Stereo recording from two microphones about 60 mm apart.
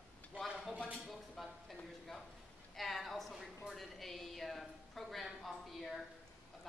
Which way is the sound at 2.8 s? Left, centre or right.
Centre.